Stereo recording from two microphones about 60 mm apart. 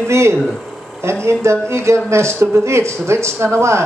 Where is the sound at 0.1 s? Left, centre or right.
Right.